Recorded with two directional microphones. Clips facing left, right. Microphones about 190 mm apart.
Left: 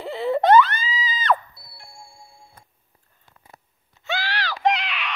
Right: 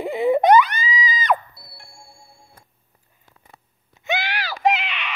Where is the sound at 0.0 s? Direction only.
15° right (ahead or behind).